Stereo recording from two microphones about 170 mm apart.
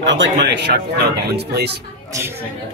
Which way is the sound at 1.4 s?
75° right (ahead or behind).